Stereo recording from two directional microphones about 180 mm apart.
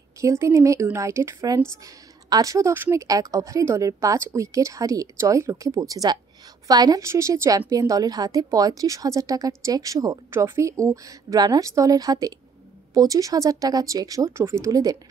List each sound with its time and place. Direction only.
0.2 s a woman's voice: 15° right (ahead or behind)